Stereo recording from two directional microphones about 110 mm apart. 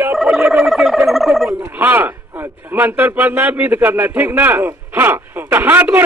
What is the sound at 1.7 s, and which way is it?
A man's voice, 15° right (ahead or behind).